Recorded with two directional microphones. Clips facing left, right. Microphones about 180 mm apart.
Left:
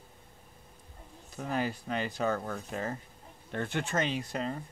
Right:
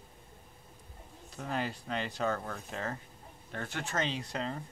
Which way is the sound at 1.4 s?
10° left (ahead or behind).